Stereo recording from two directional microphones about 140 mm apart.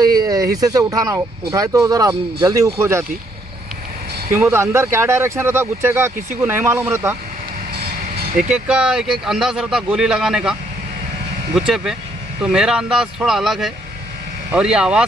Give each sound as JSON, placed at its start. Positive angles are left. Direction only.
{"t": 0.0, "sound": "a sound", "side_deg": -30}
{"t": 0.6, "sound": "speech", "side_deg": -25}
{"t": 4.3, "sound": "speech", "side_deg": -20}
{"t": 8.5, "sound": "a man's voice", "side_deg": -5}
{"t": 11.5, "sound": "a man's voice", "side_deg": -5}